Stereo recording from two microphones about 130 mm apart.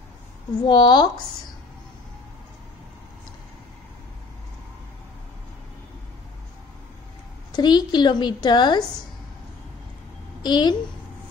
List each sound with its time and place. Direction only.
0.6 s a woman's voice: 35° left (ahead or behind)
7.5 s a woman's voice: 35° left (ahead or behind)
10.4 s a woman's voice: 35° left (ahead or behind)